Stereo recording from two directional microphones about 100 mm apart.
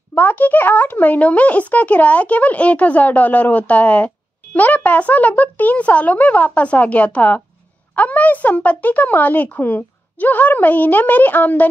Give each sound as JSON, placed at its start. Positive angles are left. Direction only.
{"t": 0.1, "sound": "speech", "side_deg": 20}